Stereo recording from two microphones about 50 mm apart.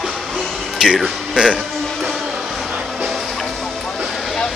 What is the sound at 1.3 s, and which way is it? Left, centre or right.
Speech, centre.